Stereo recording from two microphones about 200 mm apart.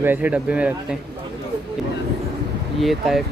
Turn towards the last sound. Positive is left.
turn(degrees=0)  # may be behind; listen again after turning